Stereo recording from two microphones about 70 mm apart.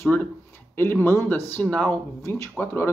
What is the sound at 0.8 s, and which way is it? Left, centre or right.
Speech, left.